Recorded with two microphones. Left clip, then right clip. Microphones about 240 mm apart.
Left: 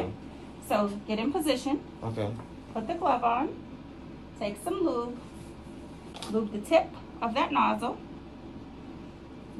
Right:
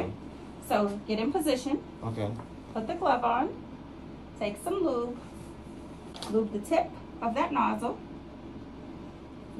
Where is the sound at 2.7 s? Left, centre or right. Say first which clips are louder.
Even; centre.